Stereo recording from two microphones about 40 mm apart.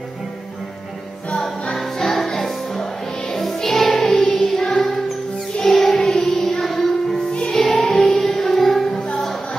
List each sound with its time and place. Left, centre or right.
1.3 s music: centre
5.6 s child singing: centre
7.5 s music: centre